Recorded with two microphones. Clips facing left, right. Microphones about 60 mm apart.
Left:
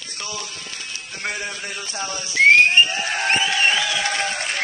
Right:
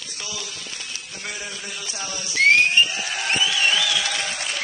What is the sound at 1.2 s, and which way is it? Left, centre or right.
Speech, left.